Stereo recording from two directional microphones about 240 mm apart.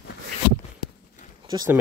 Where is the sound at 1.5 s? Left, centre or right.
Centre.